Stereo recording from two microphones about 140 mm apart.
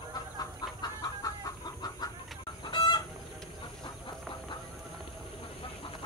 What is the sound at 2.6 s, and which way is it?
Chicken, 30° left (ahead or behind).